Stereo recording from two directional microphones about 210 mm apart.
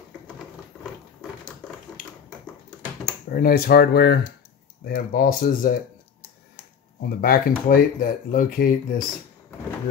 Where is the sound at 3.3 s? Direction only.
45° left (ahead or behind).